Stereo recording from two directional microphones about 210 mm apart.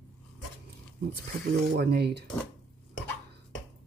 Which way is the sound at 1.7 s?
50° right (ahead or behind).